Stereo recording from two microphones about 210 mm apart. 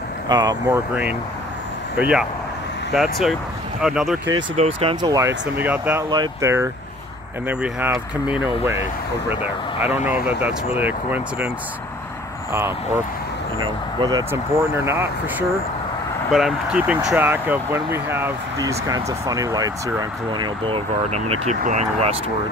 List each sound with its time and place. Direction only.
0.3 s speech: 20° right (ahead or behind)
2.0 s speech: 5° right (ahead or behind)
4.6 s speech: 25° right (ahead or behind); by 6.0 s 10° right (ahead or behind)
6.0 s speech: 20° right (ahead or behind)
10.0 s speech: 5° right (ahead or behind)
12.5 s speech: 10° right (ahead or behind)
14.0 s speech: 20° right (ahead or behind); by 22.1 s 35° right (ahead or behind)